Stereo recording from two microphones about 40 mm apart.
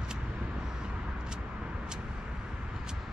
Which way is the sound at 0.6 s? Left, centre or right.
Centre.